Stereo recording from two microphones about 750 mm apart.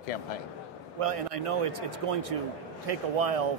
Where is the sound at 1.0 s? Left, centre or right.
Right.